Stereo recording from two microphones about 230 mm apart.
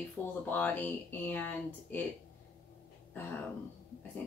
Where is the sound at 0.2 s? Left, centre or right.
Centre.